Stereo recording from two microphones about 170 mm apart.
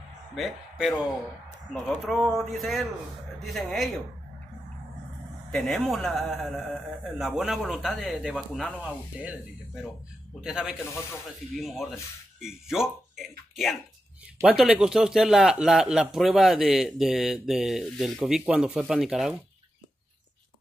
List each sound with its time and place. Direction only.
0.4 s a man's voice: 5° right (ahead or behind)
5.5 s a man's voice: centre (ahead or behind)